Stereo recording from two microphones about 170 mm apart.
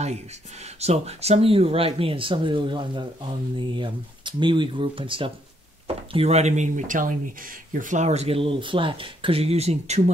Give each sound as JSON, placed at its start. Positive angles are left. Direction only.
{"t": 0.7, "sound": "speech", "side_deg": -40}